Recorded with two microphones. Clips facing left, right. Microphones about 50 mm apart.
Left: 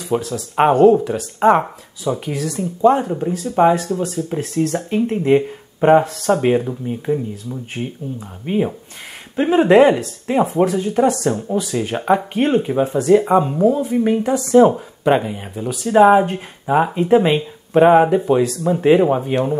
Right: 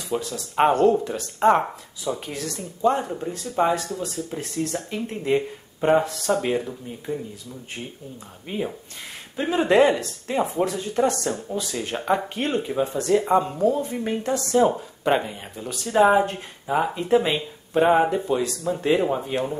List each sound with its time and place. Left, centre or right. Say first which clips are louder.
0.3 s speech: left 4 dB; centre
3.8 s speech: left 8 dB; left; by 11.1 s centre
11.2 s speech: left 8 dB; left
11.5 s speech: left 7 dB; centre